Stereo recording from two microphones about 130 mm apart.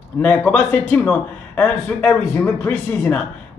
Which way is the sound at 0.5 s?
10° left (ahead or behind).